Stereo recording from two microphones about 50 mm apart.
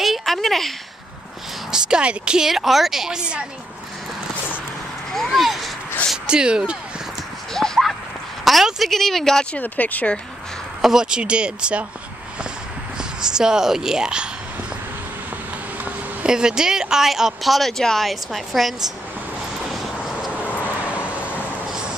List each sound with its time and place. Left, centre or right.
0.0 s a sound: centre
1.7 s a woman's voice: centre
2.4 s a woman's voice: centre
5.1 s speech: centre
6.2 s a woman's voice: centre
7.5 s clip-clop: centre
8.6 s speech: centre
9.6 s speech: left
10.8 s speech: centre
13.2 s a woman's voice: centre
16.3 s speech: centre
20.1 s vehicle: centre